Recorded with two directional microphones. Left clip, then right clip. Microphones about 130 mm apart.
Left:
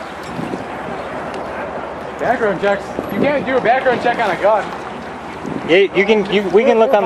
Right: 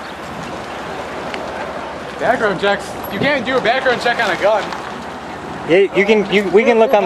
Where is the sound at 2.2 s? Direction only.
35° right (ahead or behind).